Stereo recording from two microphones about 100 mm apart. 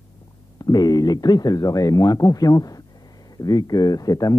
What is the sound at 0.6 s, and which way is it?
Speech, 40° left (ahead or behind).